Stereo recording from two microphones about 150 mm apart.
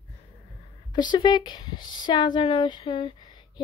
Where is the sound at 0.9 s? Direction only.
30° left (ahead or behind).